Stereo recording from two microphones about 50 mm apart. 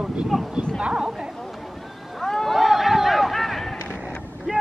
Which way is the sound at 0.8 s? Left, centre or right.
Centre.